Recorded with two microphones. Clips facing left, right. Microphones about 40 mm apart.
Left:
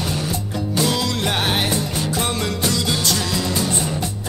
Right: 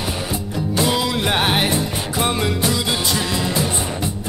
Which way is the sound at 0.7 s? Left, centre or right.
Centre.